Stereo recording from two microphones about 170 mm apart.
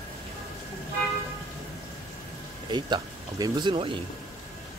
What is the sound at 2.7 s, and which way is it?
Speech, 25° right (ahead or behind).